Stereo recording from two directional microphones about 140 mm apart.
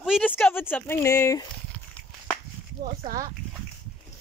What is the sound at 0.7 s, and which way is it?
Speech, 20° left (ahead or behind).